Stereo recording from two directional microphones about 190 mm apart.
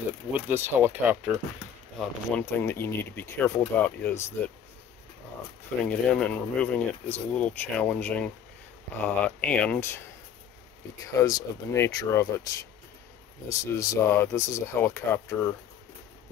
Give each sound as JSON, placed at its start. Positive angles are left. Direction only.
{"t": 0.5, "sound": "speech", "side_deg": -10}
{"t": 2.0, "sound": "speech", "side_deg": 10}
{"t": 5.9, "sound": "speech", "side_deg": 5}
{"t": 11.1, "sound": "speech", "side_deg": 20}
{"t": 13.5, "sound": "speech", "side_deg": 15}